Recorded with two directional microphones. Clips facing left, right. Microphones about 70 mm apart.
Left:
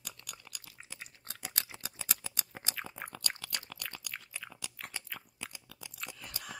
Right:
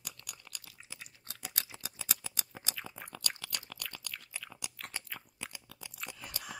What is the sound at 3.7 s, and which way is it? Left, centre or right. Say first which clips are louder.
Chewing: even; centre.